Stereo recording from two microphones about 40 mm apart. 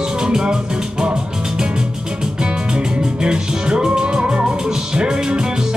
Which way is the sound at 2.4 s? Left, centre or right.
Centre.